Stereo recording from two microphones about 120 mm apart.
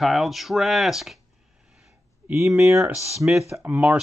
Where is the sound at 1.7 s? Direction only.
5° right (ahead or behind).